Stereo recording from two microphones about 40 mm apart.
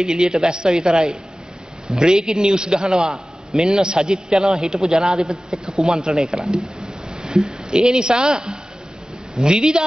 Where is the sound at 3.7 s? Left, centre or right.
Centre.